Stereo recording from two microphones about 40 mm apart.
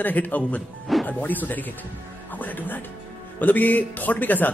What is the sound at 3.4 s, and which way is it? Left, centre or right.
Speech, left.